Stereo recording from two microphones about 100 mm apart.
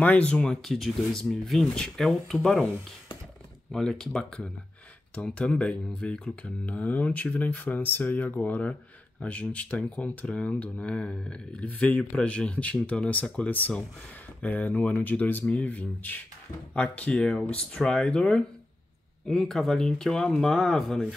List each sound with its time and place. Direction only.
0.0 s speech: 10° left (ahead or behind)
3.7 s speech: 5° left (ahead or behind)